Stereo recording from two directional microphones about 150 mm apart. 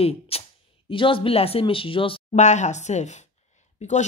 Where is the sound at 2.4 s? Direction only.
50° left (ahead or behind).